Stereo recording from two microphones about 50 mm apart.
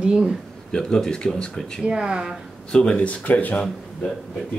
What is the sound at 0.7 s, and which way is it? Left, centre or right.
Speech, centre.